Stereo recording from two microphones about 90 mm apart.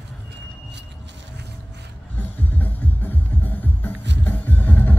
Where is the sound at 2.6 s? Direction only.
20° left (ahead or behind).